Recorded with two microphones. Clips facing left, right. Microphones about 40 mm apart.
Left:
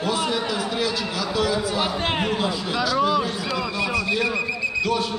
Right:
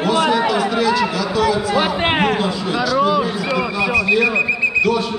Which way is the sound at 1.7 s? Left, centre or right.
Right.